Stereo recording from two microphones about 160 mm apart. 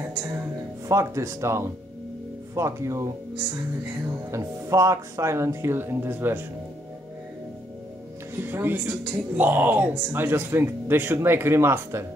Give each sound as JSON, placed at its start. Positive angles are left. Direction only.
{"t": 0.8, "sound": "speech", "side_deg": -20}
{"t": 4.3, "sound": "speech", "side_deg": -20}
{"t": 8.4, "sound": "speech", "side_deg": -15}